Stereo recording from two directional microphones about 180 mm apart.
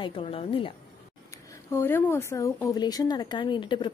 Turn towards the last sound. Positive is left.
turn(degrees=25)  # may be behind; listen again after turning